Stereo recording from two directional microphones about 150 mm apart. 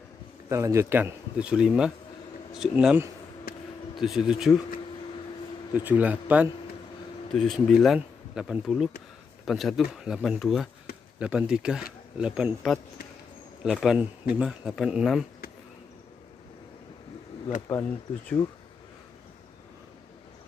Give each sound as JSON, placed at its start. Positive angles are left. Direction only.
{"t": 0.5, "sound": "speech", "side_deg": -20}
{"t": 3.5, "sound": "a sound", "side_deg": 85}
{"t": 4.0, "sound": "speech", "side_deg": -5}
{"t": 5.9, "sound": "speech", "side_deg": -10}
{"t": 7.3, "sound": "speech", "side_deg": 0}
{"t": 17.7, "sound": "speech", "side_deg": 10}